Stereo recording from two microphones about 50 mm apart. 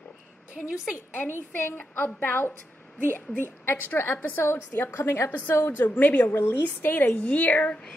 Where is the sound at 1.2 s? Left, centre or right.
Left.